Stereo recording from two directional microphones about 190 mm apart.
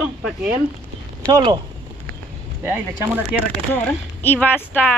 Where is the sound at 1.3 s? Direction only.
25° right (ahead or behind).